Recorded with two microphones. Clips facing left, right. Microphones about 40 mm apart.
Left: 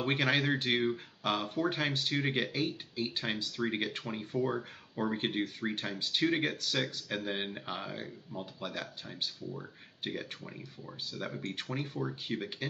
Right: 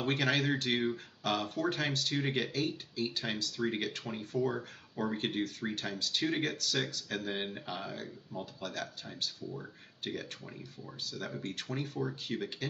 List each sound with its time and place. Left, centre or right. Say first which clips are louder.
0.0 s speech: left 1 dB; centre